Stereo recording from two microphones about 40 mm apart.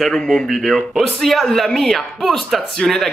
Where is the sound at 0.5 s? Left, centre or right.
Centre.